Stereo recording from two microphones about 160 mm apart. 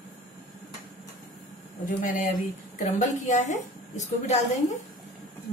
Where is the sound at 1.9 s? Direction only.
55° left (ahead or behind).